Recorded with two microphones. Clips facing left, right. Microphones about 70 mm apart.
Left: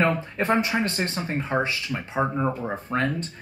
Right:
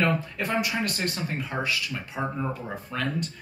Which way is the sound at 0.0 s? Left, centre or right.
Left.